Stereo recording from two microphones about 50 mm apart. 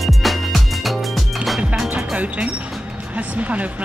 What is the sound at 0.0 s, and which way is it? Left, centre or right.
Music, centre.